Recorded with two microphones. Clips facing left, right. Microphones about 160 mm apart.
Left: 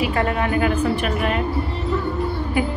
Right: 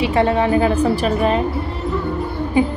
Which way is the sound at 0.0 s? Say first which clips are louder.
Right 5 dB; 30° right (ahead or behind).